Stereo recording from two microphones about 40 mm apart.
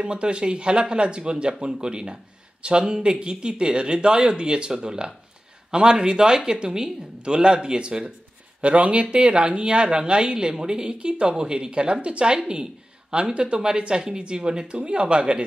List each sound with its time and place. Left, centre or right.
0.0 s speech: right
8.5 s speech: right